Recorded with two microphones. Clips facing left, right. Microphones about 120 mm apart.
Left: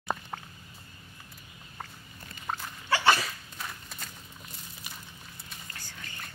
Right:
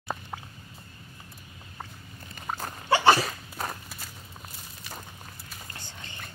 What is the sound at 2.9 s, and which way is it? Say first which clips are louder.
Sneeze: right 5 dB; 30° right (ahead or behind).